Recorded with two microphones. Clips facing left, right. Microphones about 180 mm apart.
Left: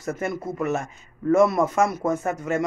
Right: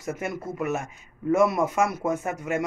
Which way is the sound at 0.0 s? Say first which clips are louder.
Left 3 dB; 10° right (ahead or behind).